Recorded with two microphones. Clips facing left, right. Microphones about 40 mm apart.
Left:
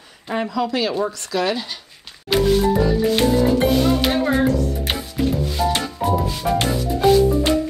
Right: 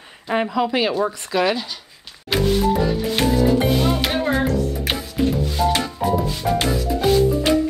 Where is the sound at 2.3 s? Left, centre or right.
Centre.